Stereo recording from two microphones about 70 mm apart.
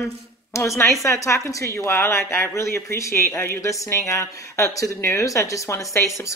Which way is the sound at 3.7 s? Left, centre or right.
Left.